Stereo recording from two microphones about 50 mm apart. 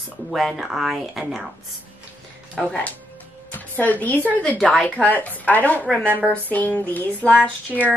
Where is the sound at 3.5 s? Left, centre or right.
Left.